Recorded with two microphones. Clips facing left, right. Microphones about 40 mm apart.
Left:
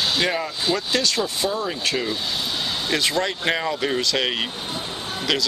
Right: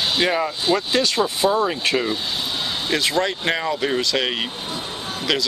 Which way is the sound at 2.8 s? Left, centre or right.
Centre.